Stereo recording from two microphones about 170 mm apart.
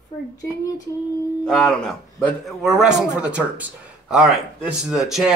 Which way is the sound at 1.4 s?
Centre (ahead or behind).